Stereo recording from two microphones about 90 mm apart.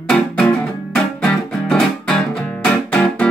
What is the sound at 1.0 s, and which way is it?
Guitar, 10° left (ahead or behind).